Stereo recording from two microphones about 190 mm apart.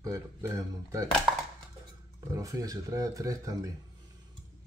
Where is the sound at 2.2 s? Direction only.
20° right (ahead or behind).